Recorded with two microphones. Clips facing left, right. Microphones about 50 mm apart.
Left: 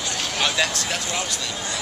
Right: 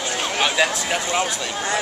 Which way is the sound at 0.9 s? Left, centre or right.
Right.